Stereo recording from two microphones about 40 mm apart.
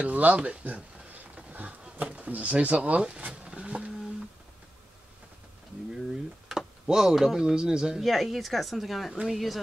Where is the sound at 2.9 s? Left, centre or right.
Right.